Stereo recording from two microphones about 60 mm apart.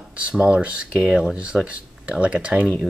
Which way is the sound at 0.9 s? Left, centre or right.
Centre.